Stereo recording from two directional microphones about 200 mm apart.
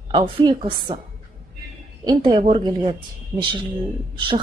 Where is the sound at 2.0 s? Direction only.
20° right (ahead or behind).